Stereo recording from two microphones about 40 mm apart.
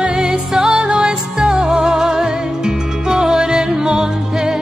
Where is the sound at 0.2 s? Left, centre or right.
Centre.